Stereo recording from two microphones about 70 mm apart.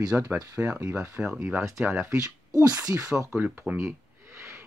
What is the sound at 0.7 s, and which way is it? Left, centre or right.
Speech, right.